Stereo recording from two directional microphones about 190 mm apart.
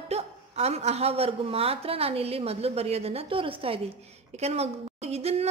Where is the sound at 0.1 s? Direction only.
35° right (ahead or behind).